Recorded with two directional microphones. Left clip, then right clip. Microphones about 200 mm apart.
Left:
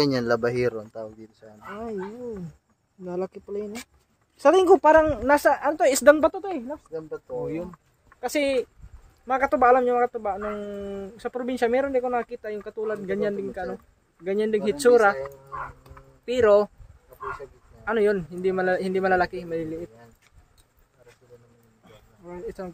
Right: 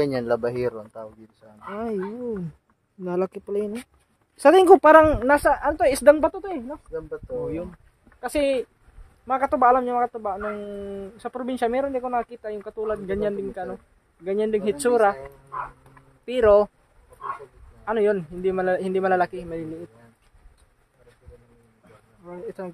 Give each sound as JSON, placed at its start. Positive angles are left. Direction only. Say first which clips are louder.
{"t": 0.0, "sound": "speech", "louder": "even", "side_deg": 50}
{"t": 3.0, "sound": "a woman's voice", "louder": "right 5 dB", "side_deg": -30}
{"t": 4.9, "sound": "speech", "louder": "right 4 dB", "side_deg": -45}
{"t": 5.4, "sound": "speech", "louder": "even", "side_deg": -5}
{"t": 16.3, "sound": "speech", "louder": "right 2 dB", "side_deg": -5}
{"t": 17.8, "sound": "speech", "louder": "right 1 dB", "side_deg": 0}
{"t": 21.8, "sound": "insect", "louder": "even", "side_deg": 0}